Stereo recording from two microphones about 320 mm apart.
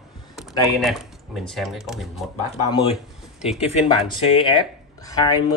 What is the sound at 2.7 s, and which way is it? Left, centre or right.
Speech, centre.